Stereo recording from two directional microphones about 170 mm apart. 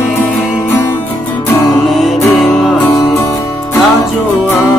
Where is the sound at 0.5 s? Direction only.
25° left (ahead or behind).